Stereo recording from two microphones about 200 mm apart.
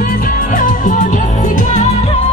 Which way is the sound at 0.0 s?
45° left (ahead or behind).